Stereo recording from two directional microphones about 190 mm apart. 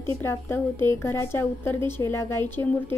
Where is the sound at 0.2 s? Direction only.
10° left (ahead or behind).